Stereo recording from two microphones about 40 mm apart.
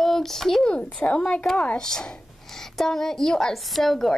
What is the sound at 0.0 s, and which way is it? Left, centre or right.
Speech, centre.